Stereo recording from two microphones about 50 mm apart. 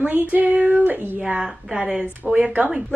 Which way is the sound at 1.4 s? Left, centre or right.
Centre.